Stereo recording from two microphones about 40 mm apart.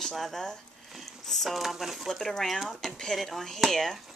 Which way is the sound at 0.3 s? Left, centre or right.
Centre.